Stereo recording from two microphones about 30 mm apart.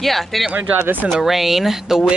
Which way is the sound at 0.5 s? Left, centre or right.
Right.